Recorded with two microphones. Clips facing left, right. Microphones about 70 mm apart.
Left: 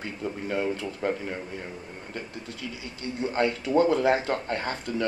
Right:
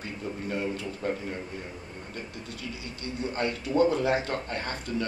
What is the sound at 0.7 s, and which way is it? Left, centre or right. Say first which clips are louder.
Speech: left 3 dB; left.